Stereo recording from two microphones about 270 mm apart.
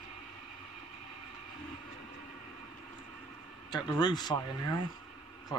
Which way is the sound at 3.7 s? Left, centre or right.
Centre.